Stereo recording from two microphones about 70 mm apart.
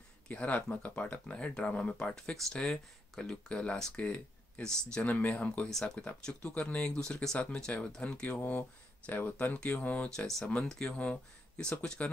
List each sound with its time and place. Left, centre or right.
0.3 s speech: left
5.7 s speech: centre; by 10.0 s left
10.0 s speech: centre